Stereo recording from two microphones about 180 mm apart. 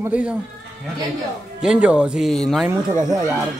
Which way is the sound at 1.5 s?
5° right (ahead or behind).